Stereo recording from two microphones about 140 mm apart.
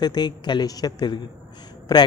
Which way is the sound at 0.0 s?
30° left (ahead or behind).